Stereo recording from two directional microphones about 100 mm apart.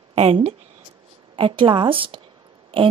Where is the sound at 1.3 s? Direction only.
55° right (ahead or behind).